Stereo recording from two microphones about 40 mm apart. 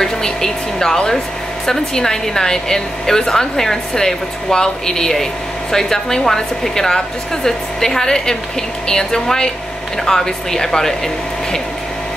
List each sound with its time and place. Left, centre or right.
0.0 s speech: centre